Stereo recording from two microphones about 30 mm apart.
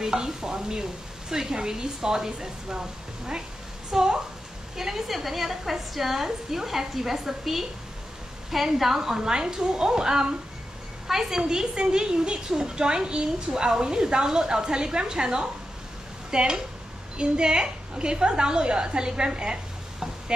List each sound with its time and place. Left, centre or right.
0.0 s a woman's voice: centre
8.7 s a woman's voice: centre
11.7 s a woman's voice: right